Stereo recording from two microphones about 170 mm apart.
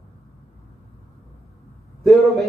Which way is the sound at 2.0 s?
Centre (ahead or behind).